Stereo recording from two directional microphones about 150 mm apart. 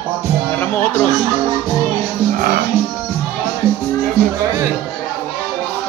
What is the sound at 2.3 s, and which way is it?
Music, 80° right.